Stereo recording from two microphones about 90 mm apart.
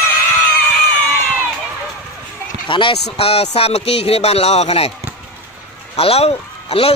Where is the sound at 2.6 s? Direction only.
70° left (ahead or behind); by 4.2 s 90° left.